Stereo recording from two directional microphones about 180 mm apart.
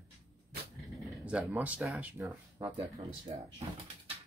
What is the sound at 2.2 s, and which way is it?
Speech, 20° right (ahead or behind).